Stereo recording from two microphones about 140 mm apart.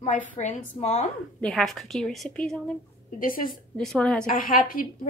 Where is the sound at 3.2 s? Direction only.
90° left.